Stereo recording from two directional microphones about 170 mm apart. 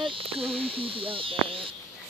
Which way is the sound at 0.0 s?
30° right (ahead or behind).